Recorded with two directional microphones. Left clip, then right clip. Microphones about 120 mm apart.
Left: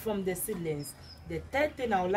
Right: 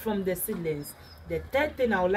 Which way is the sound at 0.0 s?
35° left (ahead or behind).